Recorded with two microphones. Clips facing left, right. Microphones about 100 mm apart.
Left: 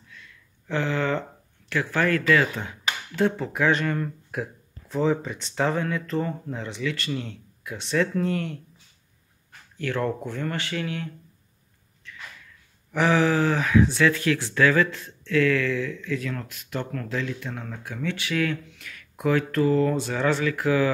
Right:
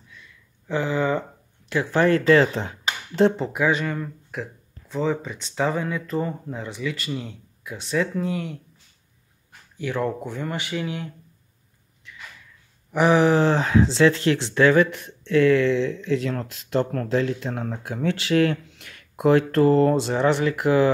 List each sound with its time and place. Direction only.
0.1 s a sound: 10° right (ahead or behind)
1.9 s speech: 25° right (ahead or behind)
3.5 s speech: 5° right (ahead or behind)
9.8 s speech: 10° right (ahead or behind)
12.9 s speech: 15° right (ahead or behind); by 20.0 s 40° right (ahead or behind)
20.1 s speech: 20° right (ahead or behind)